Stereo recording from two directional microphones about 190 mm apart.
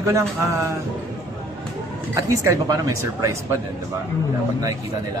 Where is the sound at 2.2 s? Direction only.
15° right (ahead or behind).